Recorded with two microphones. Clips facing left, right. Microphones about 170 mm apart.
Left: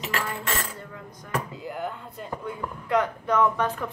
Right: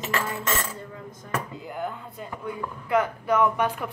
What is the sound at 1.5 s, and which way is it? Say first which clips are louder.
Speech: even; centre (ahead or behind).